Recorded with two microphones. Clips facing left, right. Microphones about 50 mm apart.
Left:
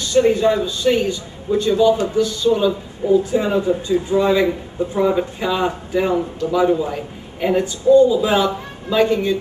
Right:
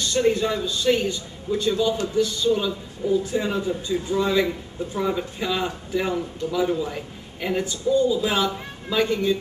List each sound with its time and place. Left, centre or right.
0.1 s speech: centre
2.0 s speech: left
2.2 s speech: centre